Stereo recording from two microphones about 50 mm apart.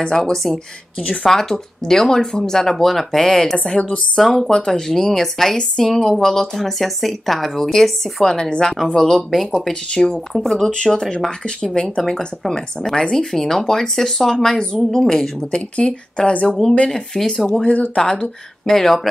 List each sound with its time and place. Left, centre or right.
0.0 s speech: centre
3.5 s speech: centre
16.9 s speech: centre
17.5 s speech: centre